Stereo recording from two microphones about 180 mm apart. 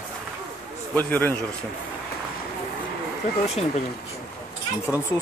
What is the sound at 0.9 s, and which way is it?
Speech, 10° left (ahead or behind).